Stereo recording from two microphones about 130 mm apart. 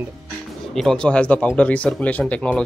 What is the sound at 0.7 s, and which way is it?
Speech, 5° left (ahead or behind).